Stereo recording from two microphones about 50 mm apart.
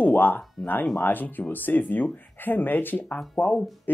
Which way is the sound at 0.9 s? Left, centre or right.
Left.